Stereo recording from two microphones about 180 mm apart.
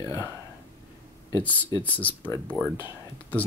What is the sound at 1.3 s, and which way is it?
Speech, 15° left (ahead or behind).